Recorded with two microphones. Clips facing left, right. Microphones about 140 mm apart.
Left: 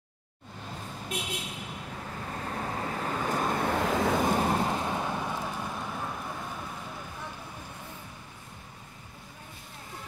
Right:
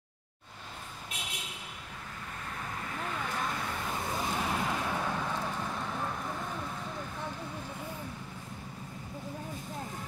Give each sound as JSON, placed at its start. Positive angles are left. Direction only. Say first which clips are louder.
{"t": 2.3, "sound": "vehicle", "louder": "left 7 dB", "side_deg": 40}
{"t": 4.3, "sound": "vehicle", "louder": "left 6 dB", "side_deg": 45}